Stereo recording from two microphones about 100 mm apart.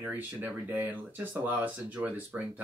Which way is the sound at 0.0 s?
15° right (ahead or behind).